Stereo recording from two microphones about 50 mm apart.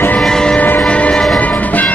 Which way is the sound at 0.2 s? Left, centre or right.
Centre.